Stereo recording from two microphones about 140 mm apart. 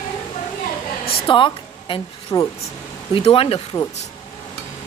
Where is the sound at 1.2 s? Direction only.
35° left (ahead or behind).